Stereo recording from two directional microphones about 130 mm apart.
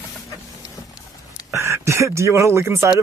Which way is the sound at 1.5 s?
20° right (ahead or behind).